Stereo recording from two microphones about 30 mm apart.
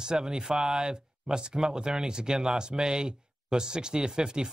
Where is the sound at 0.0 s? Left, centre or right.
Right.